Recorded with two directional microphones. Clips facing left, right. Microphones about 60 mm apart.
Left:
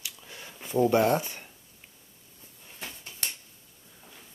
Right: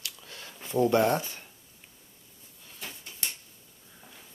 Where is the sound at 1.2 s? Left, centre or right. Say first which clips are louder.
Left 1 dB; left.